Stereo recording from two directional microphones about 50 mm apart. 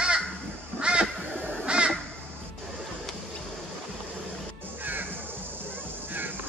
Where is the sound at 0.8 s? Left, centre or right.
Centre.